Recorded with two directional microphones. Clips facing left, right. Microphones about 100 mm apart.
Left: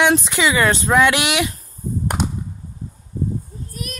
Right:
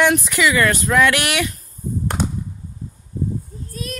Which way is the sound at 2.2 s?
20° left (ahead or behind).